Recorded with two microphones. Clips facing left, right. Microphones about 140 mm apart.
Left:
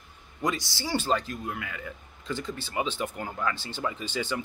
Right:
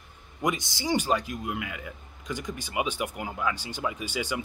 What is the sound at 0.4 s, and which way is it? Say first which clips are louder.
Speech: right 1 dB; 20° right (ahead or behind).